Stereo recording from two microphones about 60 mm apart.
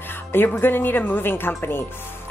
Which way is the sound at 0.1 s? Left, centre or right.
Left.